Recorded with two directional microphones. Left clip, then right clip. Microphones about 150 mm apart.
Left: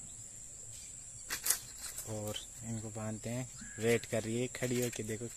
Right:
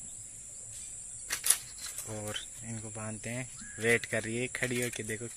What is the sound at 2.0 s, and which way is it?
Speech, centre (ahead or behind).